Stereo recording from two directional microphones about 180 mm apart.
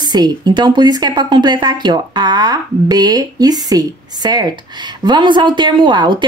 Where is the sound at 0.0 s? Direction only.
25° right (ahead or behind).